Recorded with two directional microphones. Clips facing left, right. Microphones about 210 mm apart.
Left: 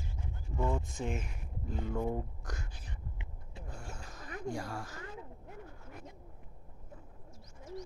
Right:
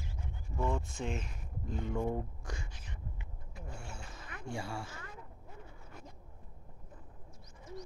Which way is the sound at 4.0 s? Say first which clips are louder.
Left 4 dB; 40° left (ahead or behind).